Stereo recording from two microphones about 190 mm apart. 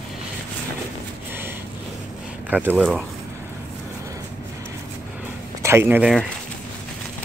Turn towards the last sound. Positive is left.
turn(degrees=-10)  # may be behind; listen again after turning